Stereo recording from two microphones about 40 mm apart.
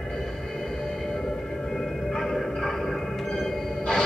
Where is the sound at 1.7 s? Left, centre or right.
Centre.